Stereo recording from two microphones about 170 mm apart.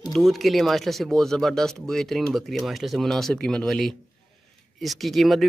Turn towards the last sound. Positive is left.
turn(degrees=0)  # may be behind; listen again after turning